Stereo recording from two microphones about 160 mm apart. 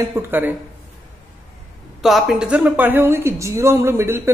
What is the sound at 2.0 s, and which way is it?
A woman's voice, centre (ahead or behind).